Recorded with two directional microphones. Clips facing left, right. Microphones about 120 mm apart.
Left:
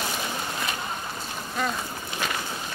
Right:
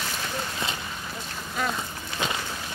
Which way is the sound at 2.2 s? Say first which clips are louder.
Right 2 dB; 20° right (ahead or behind).